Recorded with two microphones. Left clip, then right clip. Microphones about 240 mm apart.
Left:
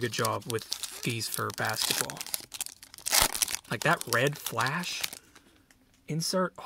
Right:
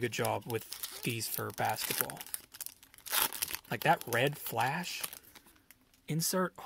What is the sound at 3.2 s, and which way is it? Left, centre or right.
Crumpling, centre.